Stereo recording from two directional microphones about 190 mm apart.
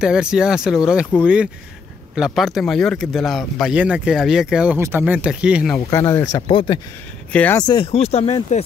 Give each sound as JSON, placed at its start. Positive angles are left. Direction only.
{"t": 0.0, "sound": "speech", "side_deg": -5}
{"t": 5.9, "sound": "speech", "side_deg": 15}
{"t": 6.3, "sound": "speech", "side_deg": 25}
{"t": 7.3, "sound": "speech", "side_deg": 10}
{"t": 7.6, "sound": "speech", "side_deg": 25}